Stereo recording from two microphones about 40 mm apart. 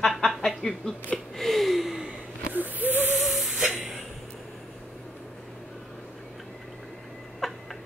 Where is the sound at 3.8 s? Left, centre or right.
Centre.